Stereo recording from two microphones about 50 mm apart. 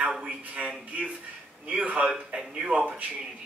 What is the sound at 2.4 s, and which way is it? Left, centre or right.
Speech, centre.